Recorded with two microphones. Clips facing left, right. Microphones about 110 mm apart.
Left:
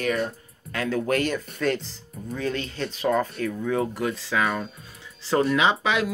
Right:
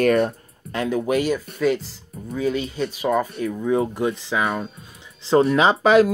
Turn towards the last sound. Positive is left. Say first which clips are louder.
# right 7 dB
turn(degrees=-40)  # may be behind; listen again after turning